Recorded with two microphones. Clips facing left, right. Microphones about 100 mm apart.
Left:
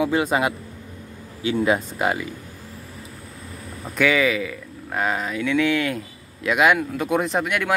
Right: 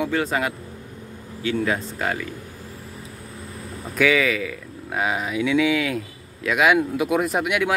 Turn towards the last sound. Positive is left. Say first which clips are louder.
# right 1 dB
turn(degrees=-5)  # may be behind; listen again after turning